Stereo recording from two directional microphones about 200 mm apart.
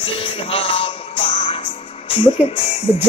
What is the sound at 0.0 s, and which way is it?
Music, 25° left (ahead or behind).